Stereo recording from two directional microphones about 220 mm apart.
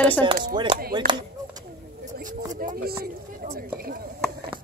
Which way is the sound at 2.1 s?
35° right (ahead or behind).